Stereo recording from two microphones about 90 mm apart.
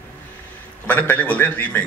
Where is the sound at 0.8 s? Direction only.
20° left (ahead or behind).